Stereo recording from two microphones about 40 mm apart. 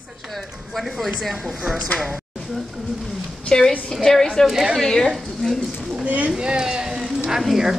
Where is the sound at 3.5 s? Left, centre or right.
Centre.